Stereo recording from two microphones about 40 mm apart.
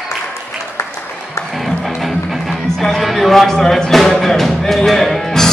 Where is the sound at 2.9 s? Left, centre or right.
Centre.